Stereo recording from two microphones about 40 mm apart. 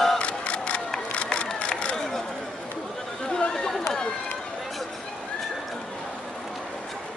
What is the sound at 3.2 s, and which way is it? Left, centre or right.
Chatter, centre.